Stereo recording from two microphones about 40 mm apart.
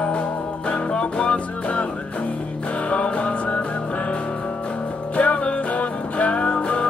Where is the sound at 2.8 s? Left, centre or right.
Left.